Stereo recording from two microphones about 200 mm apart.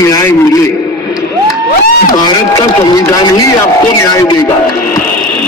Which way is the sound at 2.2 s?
20° left (ahead or behind).